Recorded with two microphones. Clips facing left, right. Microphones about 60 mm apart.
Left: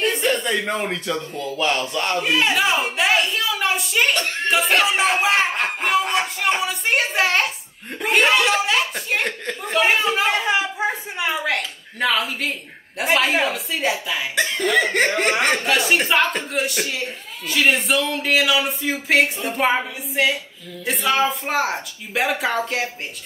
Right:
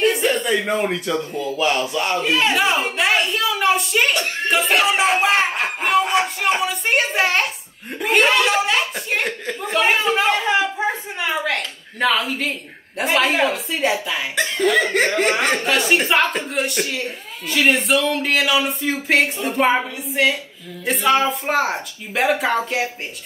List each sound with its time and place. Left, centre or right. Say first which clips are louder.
0.0 s speech: right 2 dB; centre
2.2 s speech: right 1 dB; centre
8.0 s chuckle: right 1 dB; centre
11.1 s a sound: even; centre
12.0 s speech: right 2 dB; centre